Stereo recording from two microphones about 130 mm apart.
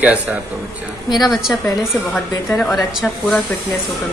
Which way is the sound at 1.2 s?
Centre (ahead or behind).